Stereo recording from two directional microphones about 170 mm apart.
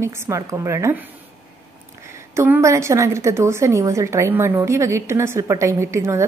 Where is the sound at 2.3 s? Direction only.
15° right (ahead or behind).